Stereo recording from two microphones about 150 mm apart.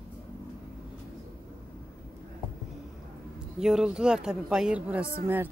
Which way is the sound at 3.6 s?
5° right (ahead or behind).